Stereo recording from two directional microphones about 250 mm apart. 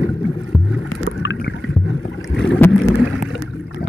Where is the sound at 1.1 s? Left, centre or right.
Left.